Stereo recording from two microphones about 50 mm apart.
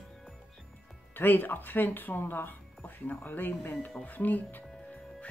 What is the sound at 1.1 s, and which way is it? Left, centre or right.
Speech, left.